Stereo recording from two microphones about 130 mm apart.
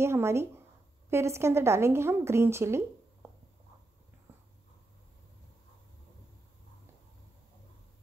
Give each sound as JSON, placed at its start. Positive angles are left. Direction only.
{"t": 0.0, "sound": "a woman's voice", "side_deg": -20}